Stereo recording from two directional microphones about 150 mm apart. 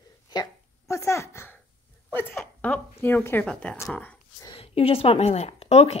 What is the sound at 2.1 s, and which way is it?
Zipper, 15° left (ahead or behind).